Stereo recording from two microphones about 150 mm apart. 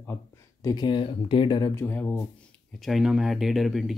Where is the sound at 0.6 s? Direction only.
30° left (ahead or behind).